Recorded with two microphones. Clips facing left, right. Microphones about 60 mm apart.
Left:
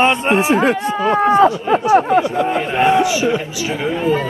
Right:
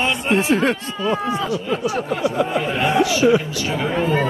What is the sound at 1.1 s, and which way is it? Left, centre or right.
Speech, left.